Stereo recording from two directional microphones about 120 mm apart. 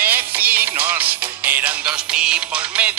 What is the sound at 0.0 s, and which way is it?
Music, 15° right (ahead or behind).